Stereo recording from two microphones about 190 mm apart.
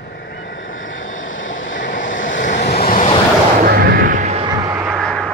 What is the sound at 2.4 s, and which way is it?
Vehicle, 40° left (ahead or behind).